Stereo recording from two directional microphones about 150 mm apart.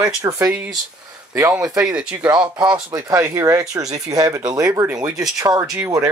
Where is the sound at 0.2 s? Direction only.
20° right (ahead or behind).